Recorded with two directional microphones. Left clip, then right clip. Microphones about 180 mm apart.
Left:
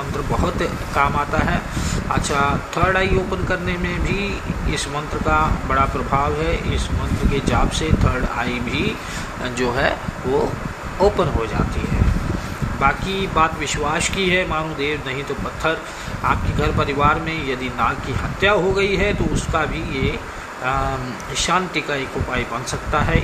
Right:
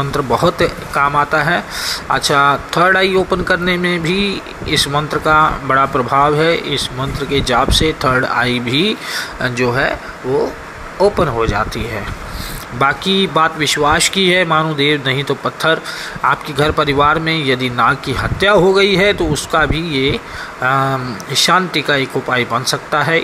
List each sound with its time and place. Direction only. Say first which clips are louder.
0.3 s speech: right 8 dB; 35° right (ahead or behind)
9.4 s speech: right 4 dB; 20° right (ahead or behind)
11.0 s speech: right 5 dB; 30° right (ahead or behind)
12.8 s speech: right 6 dB; 40° right (ahead or behind)